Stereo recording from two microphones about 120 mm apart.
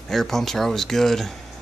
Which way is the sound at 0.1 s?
5° left (ahead or behind).